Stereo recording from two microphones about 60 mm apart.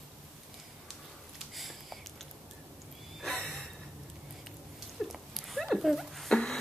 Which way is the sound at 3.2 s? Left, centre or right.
Centre.